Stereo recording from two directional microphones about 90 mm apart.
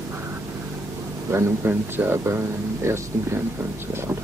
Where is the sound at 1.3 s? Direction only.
30° right (ahead or behind).